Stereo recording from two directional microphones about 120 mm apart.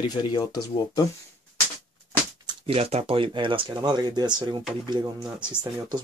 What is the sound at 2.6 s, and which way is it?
Speech, 55° right (ahead or behind).